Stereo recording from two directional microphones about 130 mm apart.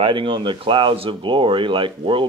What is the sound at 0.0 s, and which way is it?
Speech, 40° right (ahead or behind).